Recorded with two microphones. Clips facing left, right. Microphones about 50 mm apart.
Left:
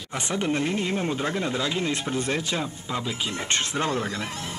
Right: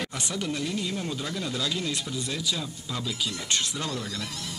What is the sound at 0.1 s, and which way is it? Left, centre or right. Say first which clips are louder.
Speech: left 5 dB; left.